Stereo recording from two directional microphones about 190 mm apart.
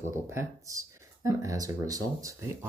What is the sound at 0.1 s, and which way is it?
Speech, 15° right (ahead or behind).